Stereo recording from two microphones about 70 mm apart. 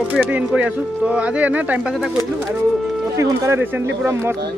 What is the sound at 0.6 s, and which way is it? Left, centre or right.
Speech, centre.